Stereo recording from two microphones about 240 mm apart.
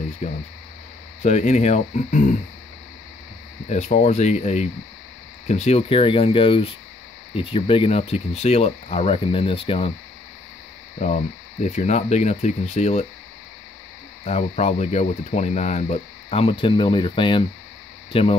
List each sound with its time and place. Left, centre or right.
0.2 s speech: left
3.6 s speech: left
11.0 s speech: left
14.2 s speech: left